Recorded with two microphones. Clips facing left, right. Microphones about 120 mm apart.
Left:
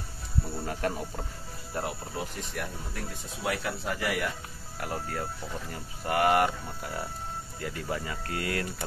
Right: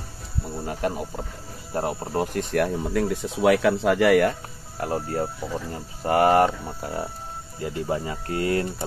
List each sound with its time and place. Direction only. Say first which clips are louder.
0.6 s speech: right 6 dB; 15° right (ahead or behind)
1.7 s speech: right 7 dB; 35° right (ahead or behind)
2.1 s speech: right 12 dB; 70° right (ahead or behind)
4.7 s speech: right 8 dB; 30° right (ahead or behind)
7.5 s speech: right 8 dB; 25° right (ahead or behind)